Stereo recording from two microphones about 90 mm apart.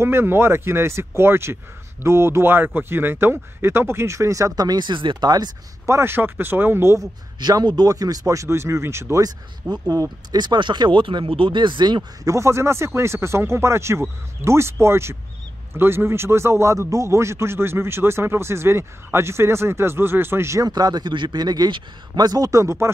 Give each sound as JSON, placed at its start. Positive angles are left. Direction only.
{"t": 0.0, "sound": "a man's voice", "side_deg": -25}
{"t": 5.9, "sound": "a man's voice", "side_deg": -30}
{"t": 7.0, "sound": "a man's voice", "side_deg": -45}
{"t": 9.2, "sound": "speech", "side_deg": -40}
{"t": 10.3, "sound": "speech", "side_deg": -55}
{"t": 12.3, "sound": "a man's voice", "side_deg": -30}
{"t": 20.6, "sound": "speech", "side_deg": -45}